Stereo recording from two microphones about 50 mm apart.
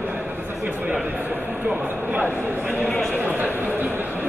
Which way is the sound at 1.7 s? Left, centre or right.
Centre.